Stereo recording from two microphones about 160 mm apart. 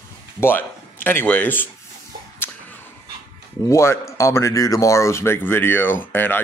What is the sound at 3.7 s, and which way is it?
Speech, 15° left (ahead or behind).